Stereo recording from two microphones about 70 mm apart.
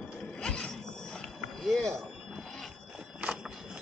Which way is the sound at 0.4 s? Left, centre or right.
Centre.